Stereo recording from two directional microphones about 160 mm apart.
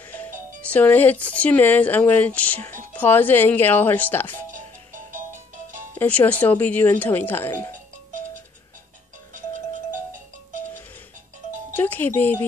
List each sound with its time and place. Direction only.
0.0 s music: 10° left (ahead or behind)
0.6 s speech: 10° left (ahead or behind)
4.6 s music: 55° right (ahead or behind)
5.9 s speech: 10° left (ahead or behind)
11.7 s music: 10° left (ahead or behind)